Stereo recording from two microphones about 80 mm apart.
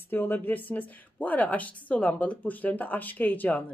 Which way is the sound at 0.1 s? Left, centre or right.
Left.